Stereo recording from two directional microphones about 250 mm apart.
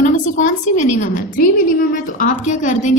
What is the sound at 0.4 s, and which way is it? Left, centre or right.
A woman's voice, left.